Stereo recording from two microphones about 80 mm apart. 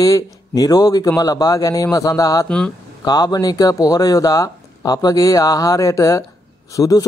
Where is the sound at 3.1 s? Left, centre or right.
Left.